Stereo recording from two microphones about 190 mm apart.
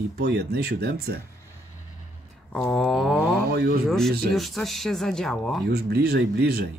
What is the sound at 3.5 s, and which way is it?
Speech, 55° right (ahead or behind).